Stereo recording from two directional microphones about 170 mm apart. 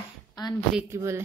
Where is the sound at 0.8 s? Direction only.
15° right (ahead or behind).